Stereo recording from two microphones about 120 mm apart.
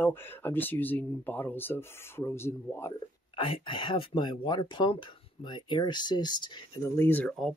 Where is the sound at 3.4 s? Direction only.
45° left (ahead or behind).